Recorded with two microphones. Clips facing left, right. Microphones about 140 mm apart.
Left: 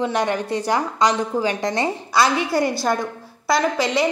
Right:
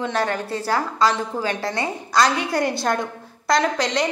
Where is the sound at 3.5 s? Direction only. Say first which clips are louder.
Left 1 dB; 5° left (ahead or behind).